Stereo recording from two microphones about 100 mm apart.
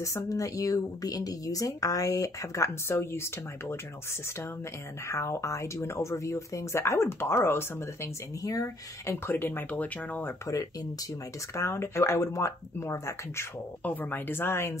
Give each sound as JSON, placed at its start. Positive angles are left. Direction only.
{"t": 0.0, "sound": "speech", "side_deg": 35}
{"t": 5.0, "sound": "speech", "side_deg": 30}
{"t": 10.4, "sound": "speech", "side_deg": 30}
{"t": 13.8, "sound": "speech", "side_deg": 15}